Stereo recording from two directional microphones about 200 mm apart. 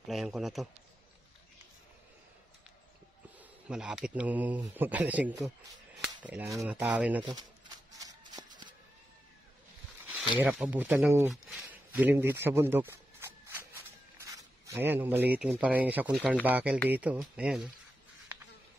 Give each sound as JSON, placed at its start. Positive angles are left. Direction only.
{"t": 0.0, "sound": "a man's voice", "side_deg": 0}
{"t": 3.3, "sound": "speech", "side_deg": -5}
{"t": 7.2, "sound": "shuffling cards", "side_deg": -20}
{"t": 10.4, "sound": "speech", "side_deg": -5}
{"t": 11.6, "sound": "a sound", "side_deg": -10}
{"t": 16.4, "sound": "speech", "side_deg": -5}